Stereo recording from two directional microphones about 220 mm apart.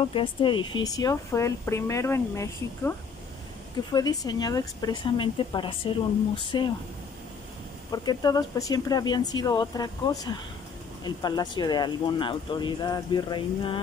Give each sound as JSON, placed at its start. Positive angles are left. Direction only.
{"t": 0.0, "sound": "speech", "side_deg": 25}
{"t": 3.9, "sound": "a woman's voice", "side_deg": 15}
{"t": 7.9, "sound": "a woman's voice", "side_deg": 20}